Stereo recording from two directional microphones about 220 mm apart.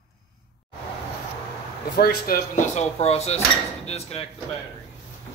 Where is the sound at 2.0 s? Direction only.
45° left (ahead or behind).